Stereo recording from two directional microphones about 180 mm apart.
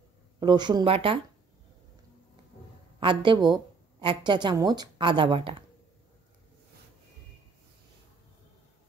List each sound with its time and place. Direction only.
0.4 s speech: 25° right (ahead or behind)
3.0 s speech: 30° right (ahead or behind)